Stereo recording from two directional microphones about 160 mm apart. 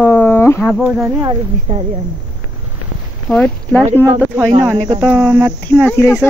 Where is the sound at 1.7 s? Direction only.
45° right (ahead or behind).